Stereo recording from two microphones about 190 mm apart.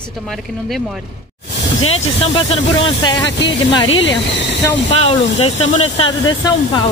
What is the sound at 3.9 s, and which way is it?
Speech, 75° left (ahead or behind).